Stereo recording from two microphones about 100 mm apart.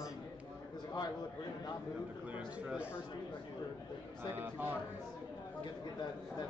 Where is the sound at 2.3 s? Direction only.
10° right (ahead or behind).